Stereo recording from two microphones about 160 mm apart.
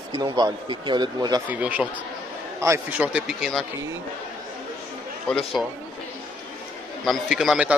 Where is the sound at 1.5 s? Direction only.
10° right (ahead or behind).